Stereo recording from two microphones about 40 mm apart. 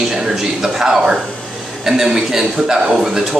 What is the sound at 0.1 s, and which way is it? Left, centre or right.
Speech, centre.